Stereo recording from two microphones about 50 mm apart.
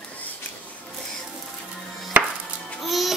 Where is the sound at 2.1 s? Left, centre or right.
Right.